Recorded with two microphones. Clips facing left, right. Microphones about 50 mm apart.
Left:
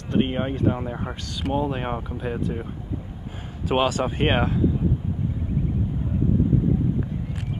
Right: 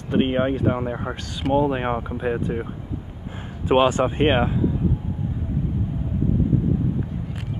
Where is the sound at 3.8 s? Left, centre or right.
Right.